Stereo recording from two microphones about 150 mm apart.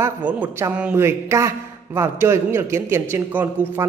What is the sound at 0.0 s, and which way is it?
A man's voice, 10° right (ahead or behind).